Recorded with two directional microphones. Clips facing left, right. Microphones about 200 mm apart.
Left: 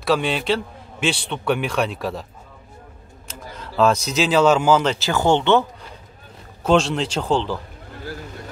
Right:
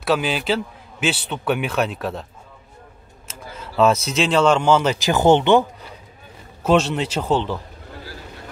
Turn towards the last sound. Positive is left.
turn(degrees=-5)  # may be behind; listen again after turning